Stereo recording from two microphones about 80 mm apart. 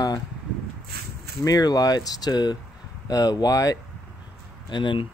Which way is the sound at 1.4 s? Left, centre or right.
Left.